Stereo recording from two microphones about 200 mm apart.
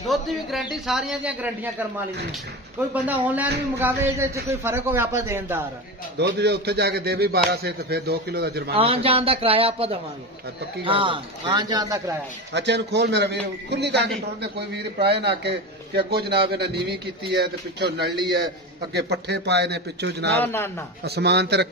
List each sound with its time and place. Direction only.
0.1 s a man's voice: centre (ahead or behind)
2.9 s a man's voice: 10° right (ahead or behind)
6.1 s speech: 55° right (ahead or behind)
8.7 s a man's voice: 30° right (ahead or behind)
12.5 s a man's voice: 60° right (ahead or behind)
18.1 s a man's voice: 20° right (ahead or behind)
18.9 s a man's voice: 60° right (ahead or behind)